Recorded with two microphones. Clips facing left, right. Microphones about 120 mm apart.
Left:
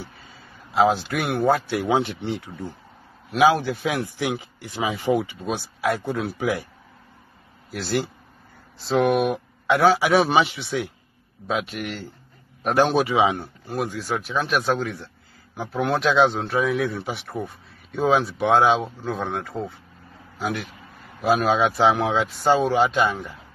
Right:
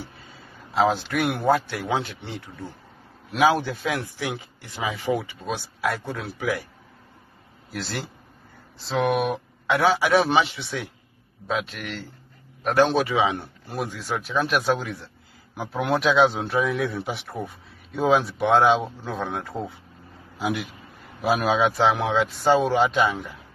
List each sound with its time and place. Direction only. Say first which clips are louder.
0.8 s a man's voice: left 1 dB; 5° left (ahead or behind)
1.7 s speech: left 5 dB; 15° left (ahead or behind)
3.3 s a man's voice: left 2 dB; centre (ahead or behind)
3.8 s speech: left 3 dB; 15° left (ahead or behind)
7.7 s a man's voice: left 6 dB; 5° left (ahead or behind)
13.4 s a man's voice: left 3 dB; centre (ahead or behind)
21.2 s a man's voice: left 2 dB; 5° right (ahead or behind)